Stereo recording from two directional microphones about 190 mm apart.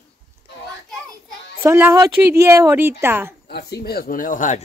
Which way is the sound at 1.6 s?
15° right (ahead or behind).